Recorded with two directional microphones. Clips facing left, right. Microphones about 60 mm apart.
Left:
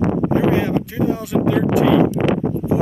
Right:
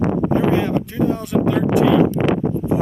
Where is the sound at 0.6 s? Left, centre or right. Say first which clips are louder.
Even; centre.